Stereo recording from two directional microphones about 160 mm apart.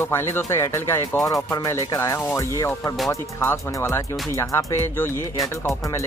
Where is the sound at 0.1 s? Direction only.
15° left (ahead or behind).